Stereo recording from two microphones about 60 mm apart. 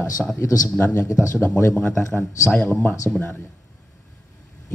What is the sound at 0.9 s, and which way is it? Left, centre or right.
A man's voice, left.